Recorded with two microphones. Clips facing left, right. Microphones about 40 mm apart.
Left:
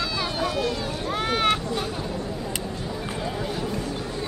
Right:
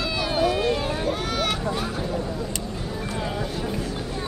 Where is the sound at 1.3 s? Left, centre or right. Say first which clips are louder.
Left 3 dB; left.